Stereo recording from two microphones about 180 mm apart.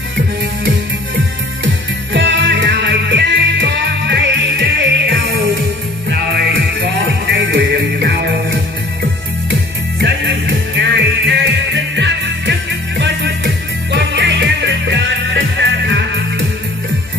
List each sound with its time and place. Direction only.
2.1 s music: 80° right
9.9 s music: 75° right (ahead or behind)